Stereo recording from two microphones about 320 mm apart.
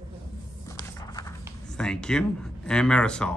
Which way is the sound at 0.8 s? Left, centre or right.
Centre.